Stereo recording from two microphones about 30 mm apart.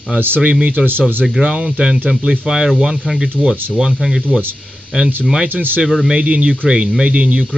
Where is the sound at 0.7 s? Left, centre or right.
Right.